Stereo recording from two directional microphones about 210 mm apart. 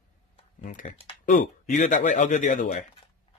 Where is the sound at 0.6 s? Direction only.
35° left (ahead or behind).